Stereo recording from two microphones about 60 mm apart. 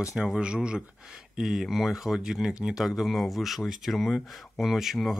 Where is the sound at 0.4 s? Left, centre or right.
Centre.